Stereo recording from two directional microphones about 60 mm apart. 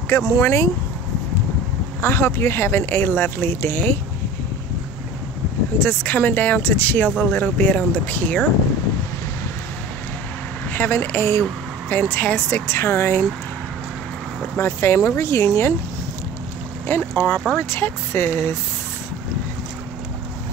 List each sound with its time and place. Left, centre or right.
0.1 s speech: left
2.0 s speech: left
5.8 s speech: left
10.7 s speech: left
12.4 s speech: left
14.6 s speech: left
16.8 s speech: left